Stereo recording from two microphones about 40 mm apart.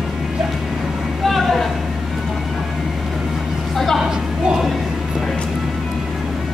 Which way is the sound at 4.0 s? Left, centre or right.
Centre.